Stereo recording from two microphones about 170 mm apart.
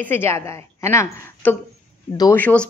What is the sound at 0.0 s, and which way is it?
Speech, 15° left (ahead or behind).